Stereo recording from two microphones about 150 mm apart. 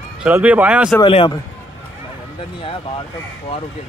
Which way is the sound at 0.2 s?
10° right (ahead or behind).